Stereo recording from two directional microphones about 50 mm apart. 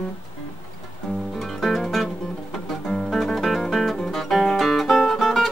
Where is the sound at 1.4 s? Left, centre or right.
Centre.